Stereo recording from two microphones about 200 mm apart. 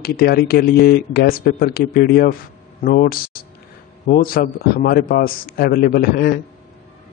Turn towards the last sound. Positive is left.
turn(degrees=50)  # may be behind; listen again after turning